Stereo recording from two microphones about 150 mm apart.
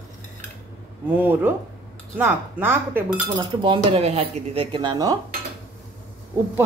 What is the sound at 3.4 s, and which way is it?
Speech, 30° right (ahead or behind).